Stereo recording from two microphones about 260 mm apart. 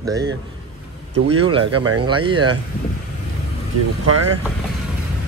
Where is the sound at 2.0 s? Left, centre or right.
Centre.